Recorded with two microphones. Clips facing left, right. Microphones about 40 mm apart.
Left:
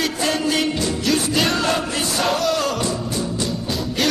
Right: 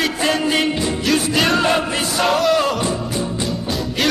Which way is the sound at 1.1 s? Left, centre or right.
Centre.